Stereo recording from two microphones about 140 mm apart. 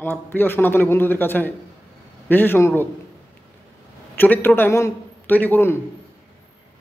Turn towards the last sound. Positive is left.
turn(degrees=15)  # may be behind; listen again after turning